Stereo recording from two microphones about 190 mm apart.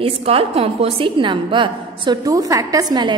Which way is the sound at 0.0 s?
30° right (ahead or behind).